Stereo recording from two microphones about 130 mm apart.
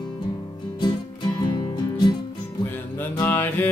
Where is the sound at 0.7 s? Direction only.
35° left (ahead or behind).